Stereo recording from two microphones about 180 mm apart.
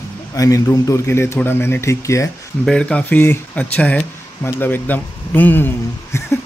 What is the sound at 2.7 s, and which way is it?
Speech, 5° left (ahead or behind).